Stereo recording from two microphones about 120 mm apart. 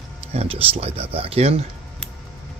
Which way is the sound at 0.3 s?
55° right (ahead or behind).